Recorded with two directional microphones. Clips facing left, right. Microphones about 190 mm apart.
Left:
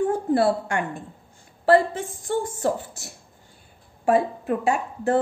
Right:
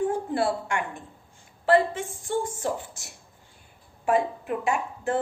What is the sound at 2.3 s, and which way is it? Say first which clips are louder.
Speech: left 2 dB; 45° left (ahead or behind).